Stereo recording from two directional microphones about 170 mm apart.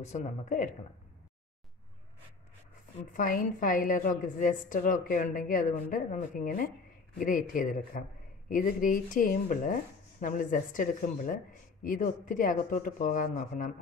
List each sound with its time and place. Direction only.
0.0 s a woman's voice: 45° left (ahead or behind)
3.1 s a woman's voice: 55° left (ahead or behind)